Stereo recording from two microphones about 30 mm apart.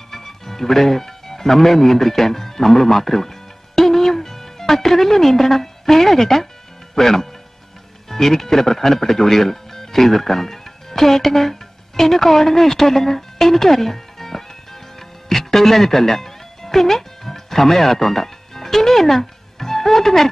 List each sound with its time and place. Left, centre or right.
0.1 s speech: centre
15.2 s music: centre